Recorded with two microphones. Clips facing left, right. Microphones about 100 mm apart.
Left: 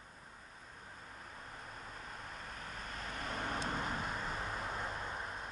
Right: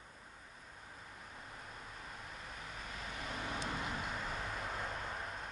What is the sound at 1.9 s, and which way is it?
Vehicle, 45° left (ahead or behind).